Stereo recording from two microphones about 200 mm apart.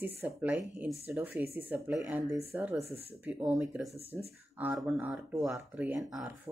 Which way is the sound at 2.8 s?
30° right (ahead or behind).